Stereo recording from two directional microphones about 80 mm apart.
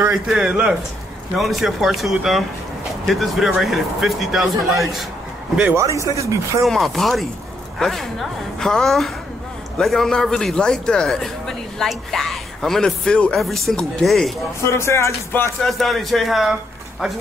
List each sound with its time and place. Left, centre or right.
0.1 s a man's voice: centre
5.8 s speech: right
6.6 s a man's voice: centre
14.6 s speech: left
15.6 s a man's voice: centre